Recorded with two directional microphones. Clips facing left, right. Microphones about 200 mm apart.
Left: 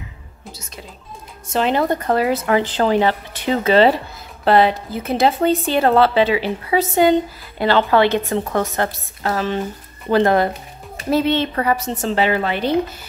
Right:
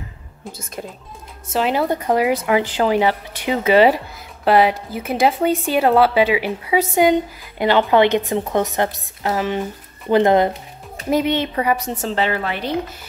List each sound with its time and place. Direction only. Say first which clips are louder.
0.5 s speech: right 6 dB; 50° right (ahead or behind)
1.5 s a woman's voice: left 1 dB; 5° right (ahead or behind)
12.4 s speech: left 4 dB; 30° left (ahead or behind)